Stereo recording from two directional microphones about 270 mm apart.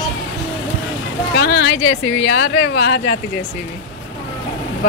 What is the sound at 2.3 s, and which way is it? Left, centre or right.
Speech, left.